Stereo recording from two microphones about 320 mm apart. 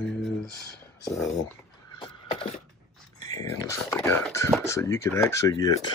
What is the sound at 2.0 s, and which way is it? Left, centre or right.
Neigh, centre.